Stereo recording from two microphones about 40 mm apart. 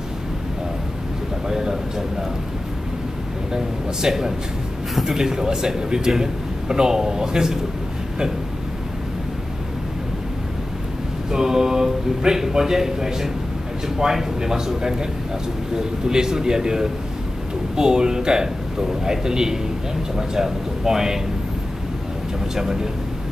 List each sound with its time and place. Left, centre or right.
1.5 s a sound: centre
3.5 s a man's voice: centre
11.2 s a man's voice: centre